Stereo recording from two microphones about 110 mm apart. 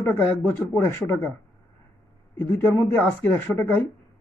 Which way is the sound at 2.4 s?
20° left (ahead or behind).